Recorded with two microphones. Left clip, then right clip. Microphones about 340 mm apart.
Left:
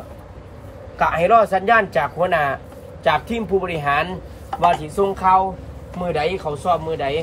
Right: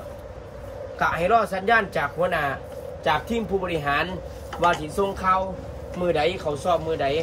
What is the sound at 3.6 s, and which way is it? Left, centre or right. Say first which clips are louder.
A man's voice: left 5 dB; centre.